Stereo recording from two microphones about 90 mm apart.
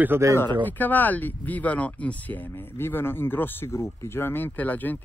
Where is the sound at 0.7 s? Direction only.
20° left (ahead or behind).